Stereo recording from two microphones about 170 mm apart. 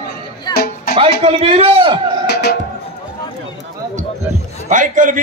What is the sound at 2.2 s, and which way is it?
Music, 75° left (ahead or behind).